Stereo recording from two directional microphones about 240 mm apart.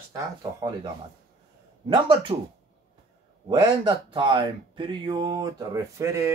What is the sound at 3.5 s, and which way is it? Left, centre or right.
Speech, centre.